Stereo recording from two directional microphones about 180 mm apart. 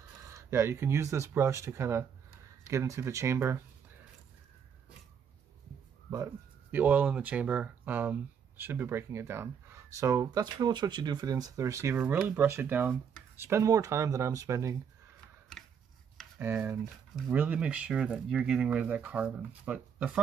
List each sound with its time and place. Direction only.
0.3 s speech: 15° right (ahead or behind)
6.0 s speech: 15° right (ahead or behind)
16.3 s speech: 10° right (ahead or behind)